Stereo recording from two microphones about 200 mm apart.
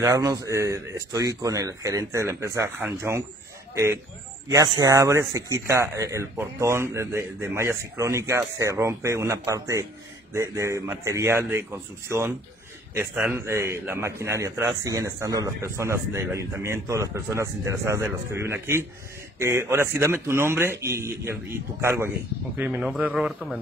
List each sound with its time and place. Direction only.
0.0 s a man's voice: 15° right (ahead or behind); by 23.6 s centre (ahead or behind)